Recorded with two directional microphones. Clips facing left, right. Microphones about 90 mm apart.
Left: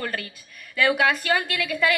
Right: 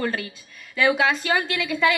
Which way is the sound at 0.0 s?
25° right (ahead or behind).